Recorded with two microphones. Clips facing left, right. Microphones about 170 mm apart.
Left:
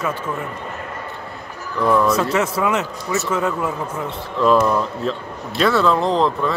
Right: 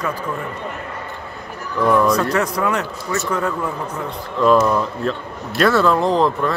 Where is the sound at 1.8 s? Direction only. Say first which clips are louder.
Right 1 dB; centre (ahead or behind).